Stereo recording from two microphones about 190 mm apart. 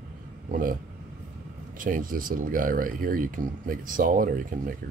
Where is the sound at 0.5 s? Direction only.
45° right (ahead or behind).